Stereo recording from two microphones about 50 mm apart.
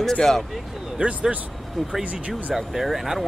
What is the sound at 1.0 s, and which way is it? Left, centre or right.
Speech, right.